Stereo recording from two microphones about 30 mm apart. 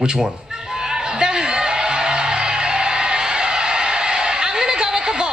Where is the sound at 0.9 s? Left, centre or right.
Right.